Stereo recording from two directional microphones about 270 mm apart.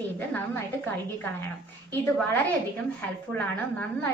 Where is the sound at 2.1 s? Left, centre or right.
Centre.